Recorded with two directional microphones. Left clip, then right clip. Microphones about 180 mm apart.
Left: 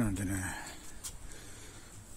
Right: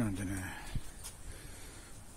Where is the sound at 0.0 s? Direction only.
15° left (ahead or behind).